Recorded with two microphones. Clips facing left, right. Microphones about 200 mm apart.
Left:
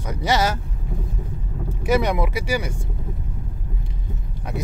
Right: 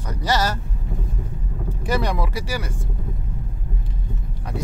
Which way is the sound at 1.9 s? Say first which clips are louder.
Left 4 dB; 10° left (ahead or behind).